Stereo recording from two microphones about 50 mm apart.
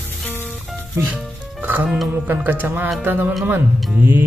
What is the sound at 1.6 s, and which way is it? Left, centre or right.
Speech, right.